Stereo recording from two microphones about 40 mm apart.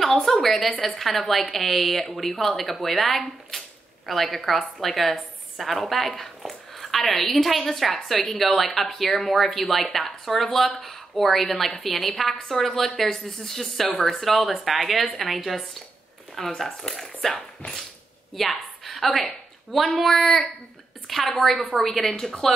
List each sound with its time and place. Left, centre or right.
0.0 s a woman's voice: centre
13.2 s speech: centre
13.9 s a woman's voice: centre
18.3 s a sound: centre
20.0 s a woman's voice: centre